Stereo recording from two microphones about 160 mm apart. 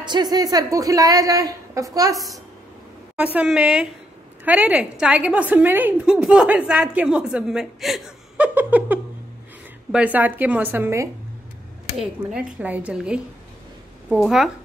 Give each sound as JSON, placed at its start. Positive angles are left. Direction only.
{"t": 0.0, "sound": "a woman's voice", "side_deg": -25}
{"t": 2.1, "sound": "a woman's voice", "side_deg": 0}
{"t": 12.0, "sound": "a woman's voice", "side_deg": -5}